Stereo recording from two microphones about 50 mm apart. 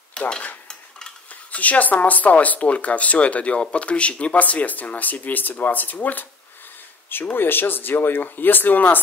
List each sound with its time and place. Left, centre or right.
0.2 s cutlery: centre
1.3 s speech: left
7.3 s speech: left